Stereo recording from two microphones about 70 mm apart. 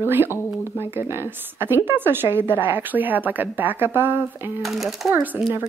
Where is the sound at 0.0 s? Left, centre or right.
Right.